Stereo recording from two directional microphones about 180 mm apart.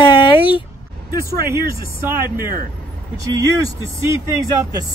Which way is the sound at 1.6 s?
60° right (ahead or behind).